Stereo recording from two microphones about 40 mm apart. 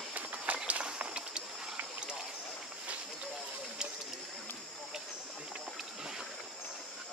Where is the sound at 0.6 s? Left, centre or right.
Right.